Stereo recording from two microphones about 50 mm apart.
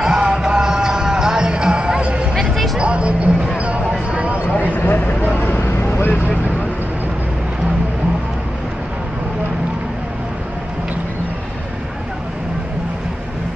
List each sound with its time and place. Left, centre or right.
0.0 s music: centre
2.5 s music: centre
2.8 s a sound: right
3.5 s basketball bounce: right
3.9 s a sound: right
4.7 s vehicle: left